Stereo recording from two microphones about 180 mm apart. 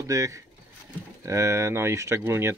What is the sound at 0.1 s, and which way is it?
Speech, 20° right (ahead or behind).